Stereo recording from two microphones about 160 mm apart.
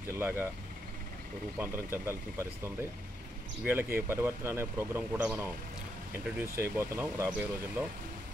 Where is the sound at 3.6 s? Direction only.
15° right (ahead or behind).